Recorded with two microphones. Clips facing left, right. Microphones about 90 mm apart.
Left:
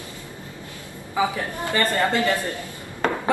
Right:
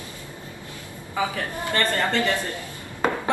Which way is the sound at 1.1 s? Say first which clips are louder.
Left 3 dB; 20° left (ahead or behind).